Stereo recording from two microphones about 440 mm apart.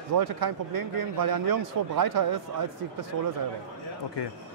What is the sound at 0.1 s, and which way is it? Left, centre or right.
Speech, right.